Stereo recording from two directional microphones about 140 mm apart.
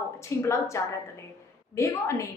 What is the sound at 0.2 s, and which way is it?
A woman's voice, 20° left (ahead or behind).